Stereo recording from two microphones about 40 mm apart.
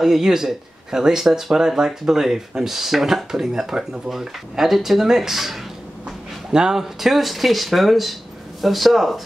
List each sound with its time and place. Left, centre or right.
0.0 s speech: centre
6.5 s speech: centre
6.8 s speech: centre